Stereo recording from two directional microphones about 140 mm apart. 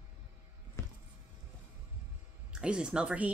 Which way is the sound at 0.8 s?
20° left (ahead or behind).